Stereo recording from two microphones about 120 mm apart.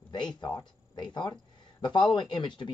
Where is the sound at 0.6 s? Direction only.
40° left (ahead or behind).